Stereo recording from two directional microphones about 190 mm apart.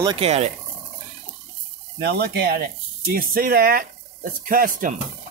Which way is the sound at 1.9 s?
60° right (ahead or behind).